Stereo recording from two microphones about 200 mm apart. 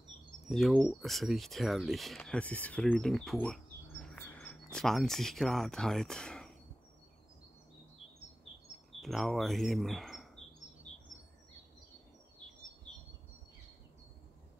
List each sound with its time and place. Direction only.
0.5 s speech: centre (ahead or behind)
3.4 s bird: 5° left (ahead or behind)
9.0 s speech: centre (ahead or behind)